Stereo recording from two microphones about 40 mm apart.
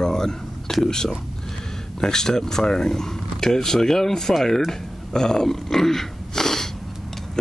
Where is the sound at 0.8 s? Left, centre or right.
Centre.